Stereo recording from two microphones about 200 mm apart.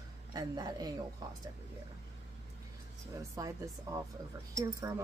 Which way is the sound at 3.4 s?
15° right (ahead or behind).